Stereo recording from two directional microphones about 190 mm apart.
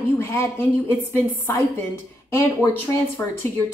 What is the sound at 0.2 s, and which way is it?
Speech, 15° left (ahead or behind).